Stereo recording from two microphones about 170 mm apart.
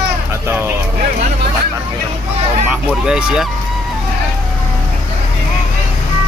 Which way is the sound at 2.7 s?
5° right (ahead or behind).